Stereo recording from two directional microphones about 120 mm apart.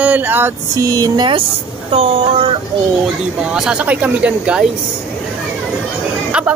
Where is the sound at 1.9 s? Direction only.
55° right (ahead or behind).